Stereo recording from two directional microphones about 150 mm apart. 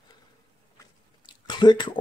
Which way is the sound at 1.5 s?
30° left (ahead or behind).